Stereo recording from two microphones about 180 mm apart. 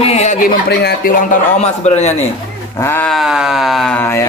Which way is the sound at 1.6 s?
40° left (ahead or behind).